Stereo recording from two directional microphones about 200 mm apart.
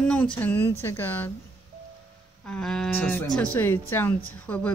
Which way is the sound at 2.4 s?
5° left (ahead or behind).